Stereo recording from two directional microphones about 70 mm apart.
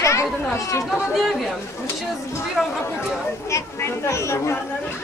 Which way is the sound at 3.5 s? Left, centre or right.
Left.